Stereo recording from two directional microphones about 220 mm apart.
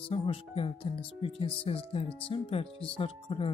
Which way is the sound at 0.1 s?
25° left (ahead or behind).